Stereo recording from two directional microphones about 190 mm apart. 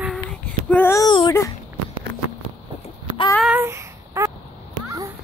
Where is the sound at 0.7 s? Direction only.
10° left (ahead or behind).